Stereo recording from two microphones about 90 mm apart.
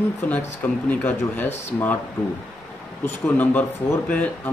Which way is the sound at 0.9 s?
20° left (ahead or behind).